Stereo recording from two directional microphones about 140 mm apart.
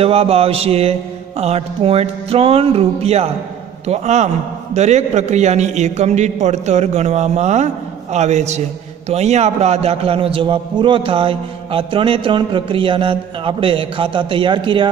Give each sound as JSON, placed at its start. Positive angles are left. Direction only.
{"t": 0.0, "sound": "a man's voice", "side_deg": -45}